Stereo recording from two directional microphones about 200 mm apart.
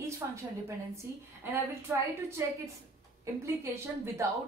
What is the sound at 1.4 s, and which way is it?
A woman's voice, 10° right (ahead or behind).